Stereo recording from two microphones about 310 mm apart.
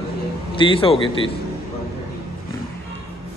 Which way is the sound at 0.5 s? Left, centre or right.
Centre.